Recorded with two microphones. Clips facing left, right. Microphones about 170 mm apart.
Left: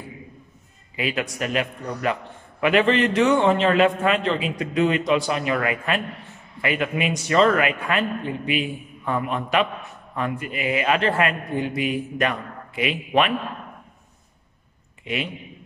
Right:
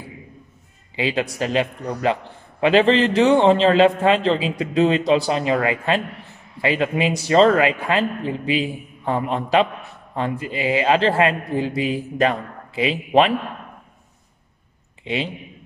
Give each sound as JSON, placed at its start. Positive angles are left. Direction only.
{"t": 0.9, "sound": "a man's voice", "side_deg": -30}